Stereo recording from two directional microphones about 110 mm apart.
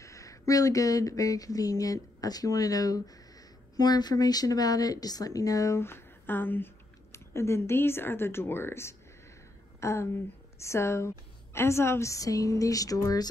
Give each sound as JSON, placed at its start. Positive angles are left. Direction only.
{"t": 0.0, "sound": "speech", "side_deg": 30}